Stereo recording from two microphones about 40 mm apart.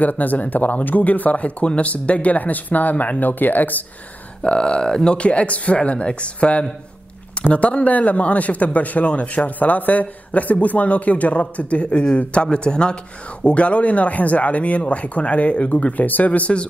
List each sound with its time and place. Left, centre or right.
0.0 s speech: left
4.4 s a man's voice: left
16.0 s a man's voice: left